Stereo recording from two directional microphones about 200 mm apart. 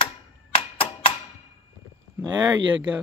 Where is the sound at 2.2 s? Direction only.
20° right (ahead or behind).